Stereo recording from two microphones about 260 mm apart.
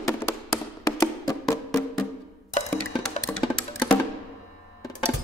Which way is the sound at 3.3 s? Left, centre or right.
Centre.